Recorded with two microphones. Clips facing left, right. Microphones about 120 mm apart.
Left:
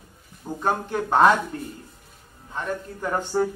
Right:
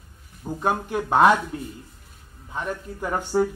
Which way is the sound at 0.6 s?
10° right (ahead or behind).